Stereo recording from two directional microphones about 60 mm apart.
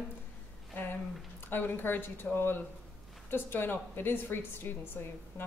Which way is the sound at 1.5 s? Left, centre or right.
Left.